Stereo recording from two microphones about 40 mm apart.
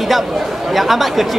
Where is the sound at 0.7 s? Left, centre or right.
Centre.